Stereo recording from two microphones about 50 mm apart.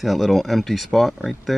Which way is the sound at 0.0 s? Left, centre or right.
Centre.